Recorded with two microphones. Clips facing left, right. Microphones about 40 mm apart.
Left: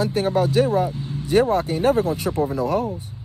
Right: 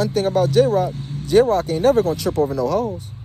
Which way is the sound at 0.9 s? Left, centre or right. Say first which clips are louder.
Left 1 dB; right.